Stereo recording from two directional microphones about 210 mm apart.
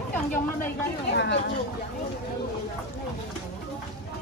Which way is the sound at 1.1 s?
55° left (ahead or behind).